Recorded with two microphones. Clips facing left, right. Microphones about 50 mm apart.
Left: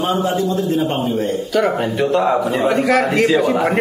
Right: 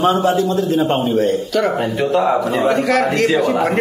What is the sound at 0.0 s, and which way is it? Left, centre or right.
A man's voice, right.